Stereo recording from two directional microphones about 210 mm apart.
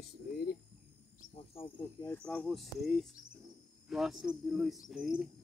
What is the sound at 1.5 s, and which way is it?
Cricket, 25° left (ahead or behind).